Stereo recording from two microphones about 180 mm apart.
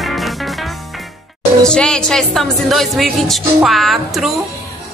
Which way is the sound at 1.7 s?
5° left (ahead or behind).